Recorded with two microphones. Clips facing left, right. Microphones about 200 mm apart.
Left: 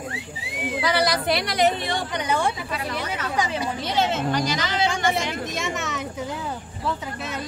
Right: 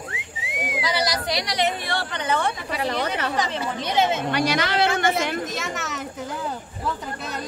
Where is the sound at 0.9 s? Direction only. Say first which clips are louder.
Left 3 dB; 60° left (ahead or behind).